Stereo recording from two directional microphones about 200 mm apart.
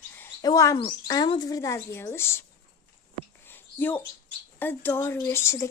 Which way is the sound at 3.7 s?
10° left (ahead or behind).